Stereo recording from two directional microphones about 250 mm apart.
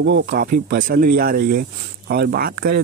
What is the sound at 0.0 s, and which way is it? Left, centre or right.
Speech, right.